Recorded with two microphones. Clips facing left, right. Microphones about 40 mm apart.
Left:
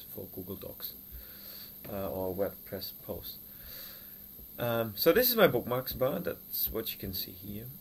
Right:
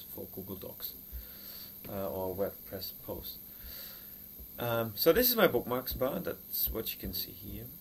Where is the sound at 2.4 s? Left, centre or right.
Centre.